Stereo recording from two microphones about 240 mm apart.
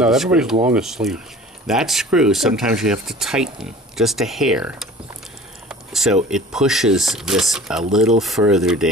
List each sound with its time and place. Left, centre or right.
0.0 s speech: centre
5.7 s a sound: centre
6.3 s speech: centre